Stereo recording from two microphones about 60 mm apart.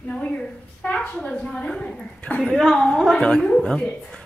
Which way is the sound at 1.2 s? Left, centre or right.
Centre.